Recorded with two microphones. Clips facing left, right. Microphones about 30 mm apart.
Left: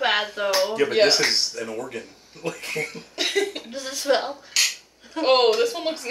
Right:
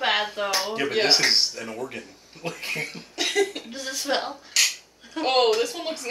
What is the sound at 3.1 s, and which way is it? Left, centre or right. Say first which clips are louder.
Cough: right 1 dB; centre.